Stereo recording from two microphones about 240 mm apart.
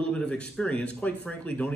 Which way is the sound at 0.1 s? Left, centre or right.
Centre.